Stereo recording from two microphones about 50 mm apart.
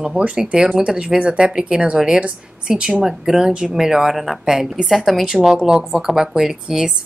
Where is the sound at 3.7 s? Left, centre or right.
Centre.